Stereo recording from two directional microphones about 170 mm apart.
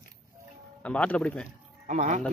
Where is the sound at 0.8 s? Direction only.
5° left (ahead or behind).